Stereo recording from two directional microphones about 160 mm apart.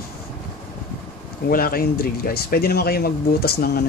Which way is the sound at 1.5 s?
65° left (ahead or behind).